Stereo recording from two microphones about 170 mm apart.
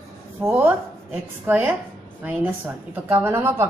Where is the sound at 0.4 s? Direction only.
10° right (ahead or behind).